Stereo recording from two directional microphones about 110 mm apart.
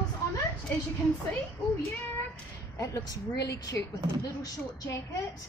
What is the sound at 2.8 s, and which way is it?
A woman's voice, 35° left (ahead or behind).